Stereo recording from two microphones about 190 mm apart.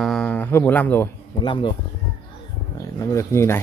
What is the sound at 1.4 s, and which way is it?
Speech, 25° left (ahead or behind).